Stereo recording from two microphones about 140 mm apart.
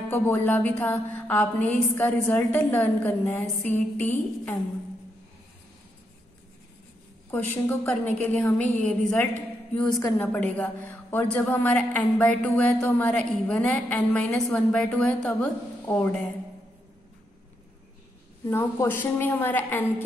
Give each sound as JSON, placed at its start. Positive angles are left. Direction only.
{"t": 0.1, "sound": "a woman's voice", "side_deg": 15}
{"t": 7.2, "sound": "a woman's voice", "side_deg": 15}
{"t": 18.4, "sound": "a woman's voice", "side_deg": 20}